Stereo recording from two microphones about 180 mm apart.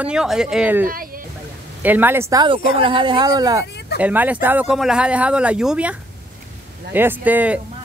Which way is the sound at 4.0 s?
10° right (ahead or behind).